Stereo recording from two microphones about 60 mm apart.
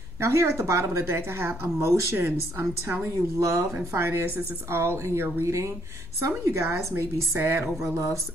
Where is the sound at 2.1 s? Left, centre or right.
Right.